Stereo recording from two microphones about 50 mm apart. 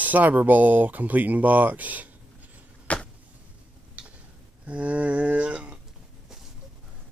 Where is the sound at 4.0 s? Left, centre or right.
Right.